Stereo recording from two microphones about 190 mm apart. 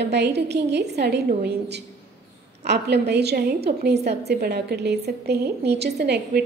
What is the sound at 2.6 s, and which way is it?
A woman's voice, 60° right (ahead or behind).